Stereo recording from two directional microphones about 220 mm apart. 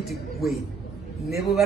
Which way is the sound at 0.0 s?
Centre (ahead or behind).